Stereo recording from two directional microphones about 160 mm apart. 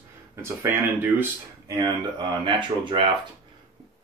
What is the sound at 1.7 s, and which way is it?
Speech, 25° right (ahead or behind).